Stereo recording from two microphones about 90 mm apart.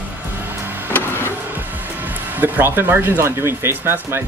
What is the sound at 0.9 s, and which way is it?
Vehicle, 25° left (ahead or behind).